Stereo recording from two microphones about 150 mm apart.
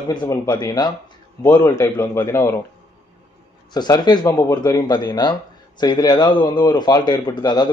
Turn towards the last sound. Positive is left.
turn(degrees=30)  # may be behind; listen again after turning